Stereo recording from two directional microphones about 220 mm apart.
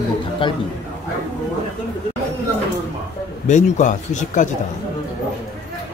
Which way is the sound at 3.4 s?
35° left (ahead or behind).